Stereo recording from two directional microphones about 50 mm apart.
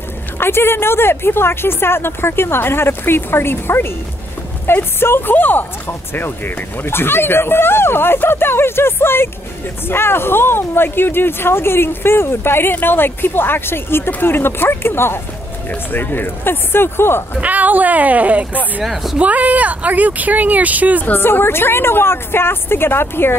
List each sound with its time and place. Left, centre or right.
0.4 s speech: left
5.3 s speech: left
15.7 s speech: left
17.4 s speech: right
21.0 s speech: left